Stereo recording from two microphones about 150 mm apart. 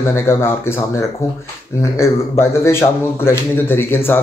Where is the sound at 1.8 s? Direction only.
20° left (ahead or behind).